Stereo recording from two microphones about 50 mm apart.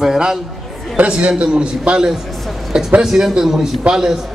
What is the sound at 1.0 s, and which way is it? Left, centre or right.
A man's voice, right.